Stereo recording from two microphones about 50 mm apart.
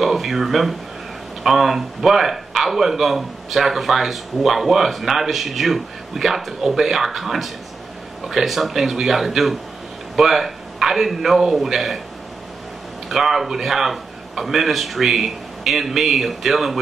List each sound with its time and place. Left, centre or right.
0.0 s a man's voice: centre
13.1 s a man's voice: centre